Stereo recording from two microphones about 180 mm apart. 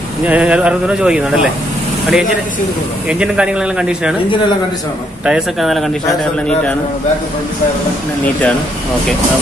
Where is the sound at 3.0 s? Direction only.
5° right (ahead or behind).